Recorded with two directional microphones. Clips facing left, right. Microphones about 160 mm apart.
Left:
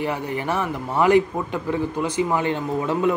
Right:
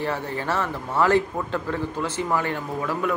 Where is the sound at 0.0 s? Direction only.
15° left (ahead or behind).